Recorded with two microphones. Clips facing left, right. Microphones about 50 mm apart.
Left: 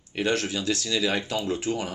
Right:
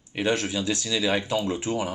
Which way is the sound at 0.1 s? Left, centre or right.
Centre.